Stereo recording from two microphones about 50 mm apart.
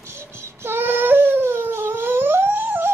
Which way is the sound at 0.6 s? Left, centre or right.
Right.